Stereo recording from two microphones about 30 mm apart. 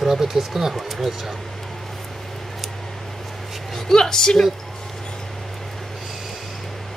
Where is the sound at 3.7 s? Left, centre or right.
Centre.